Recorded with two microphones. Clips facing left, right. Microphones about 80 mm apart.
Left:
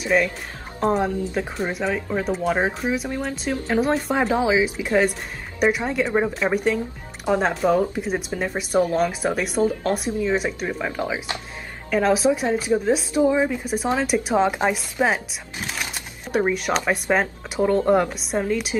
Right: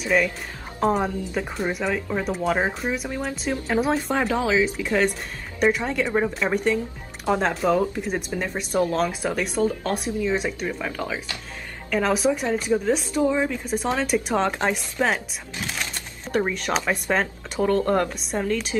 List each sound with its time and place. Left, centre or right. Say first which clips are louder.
0.0 s speech: left 1 dB; centre
4.3 s speech: left 2 dB; centre
10.7 s speech: left 3 dB; centre
11.9 s speech: left 3 dB; centre
15.6 s a sound: left 1 dB; centre
17.6 s speech: left 3 dB; centre